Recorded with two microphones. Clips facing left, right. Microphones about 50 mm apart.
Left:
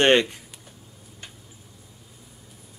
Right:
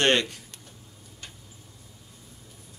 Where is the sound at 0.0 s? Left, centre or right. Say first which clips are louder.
Left 5 dB; centre.